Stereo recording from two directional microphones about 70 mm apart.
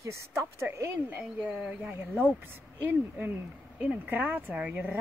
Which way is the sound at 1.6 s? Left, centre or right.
Centre.